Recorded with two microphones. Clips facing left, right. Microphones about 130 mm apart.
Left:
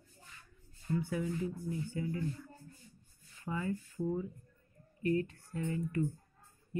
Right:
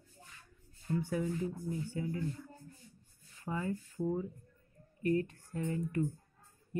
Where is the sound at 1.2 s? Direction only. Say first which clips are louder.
Right 1 dB; 35° right (ahead or behind).